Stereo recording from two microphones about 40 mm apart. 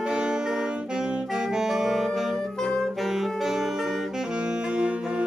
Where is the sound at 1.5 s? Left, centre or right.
Centre.